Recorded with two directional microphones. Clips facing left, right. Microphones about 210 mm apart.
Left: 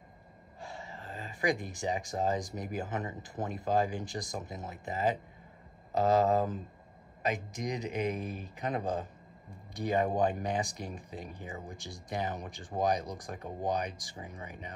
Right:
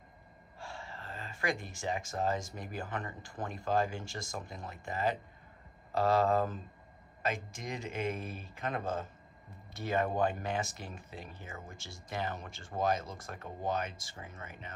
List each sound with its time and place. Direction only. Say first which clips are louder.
0.6 s a sound: left 1 dB; 20° left (ahead or behind)
2.5 s speech: left 4 dB; 20° left (ahead or behind)
7.7 s speech: left 2 dB; 15° left (ahead or behind)